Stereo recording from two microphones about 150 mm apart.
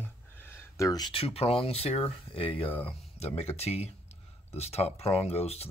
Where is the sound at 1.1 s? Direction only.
40° left (ahead or behind).